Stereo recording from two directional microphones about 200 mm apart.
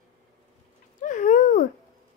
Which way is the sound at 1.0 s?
40° left (ahead or behind).